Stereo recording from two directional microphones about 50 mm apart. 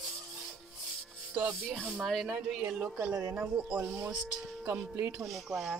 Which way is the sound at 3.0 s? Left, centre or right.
Right.